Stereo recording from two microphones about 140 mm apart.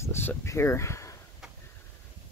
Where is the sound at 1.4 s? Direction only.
5° right (ahead or behind).